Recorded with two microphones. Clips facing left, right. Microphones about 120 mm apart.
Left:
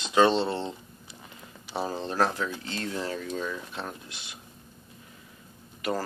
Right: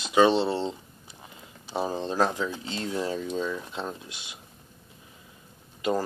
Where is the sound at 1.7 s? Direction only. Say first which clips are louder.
Right 2 dB; 15° right (ahead or behind).